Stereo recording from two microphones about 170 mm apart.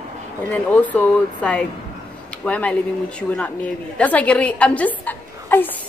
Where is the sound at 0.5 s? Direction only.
10° left (ahead or behind).